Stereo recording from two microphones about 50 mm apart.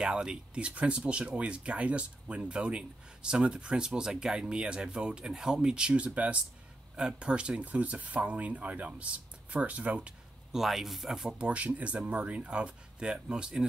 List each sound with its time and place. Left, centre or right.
0.0 s speech: centre
10.5 s speech: centre
11.3 s speech: right